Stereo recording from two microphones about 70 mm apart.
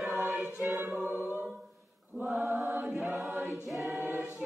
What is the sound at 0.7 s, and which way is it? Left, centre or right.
A capella, right.